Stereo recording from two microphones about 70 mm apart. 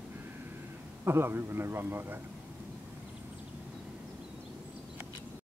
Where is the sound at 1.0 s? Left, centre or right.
Right.